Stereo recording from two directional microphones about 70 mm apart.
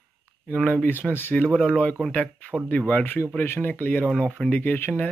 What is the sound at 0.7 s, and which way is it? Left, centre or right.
Speech, left.